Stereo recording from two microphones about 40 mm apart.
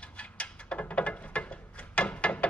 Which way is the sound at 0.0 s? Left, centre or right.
Left.